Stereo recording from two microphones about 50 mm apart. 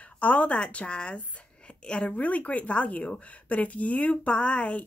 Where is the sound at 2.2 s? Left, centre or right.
Left.